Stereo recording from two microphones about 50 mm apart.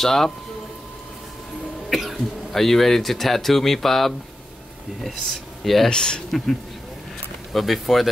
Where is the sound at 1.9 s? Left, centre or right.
Centre.